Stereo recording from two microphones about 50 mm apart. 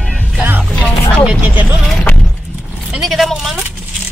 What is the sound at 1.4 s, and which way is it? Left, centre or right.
Speech, right.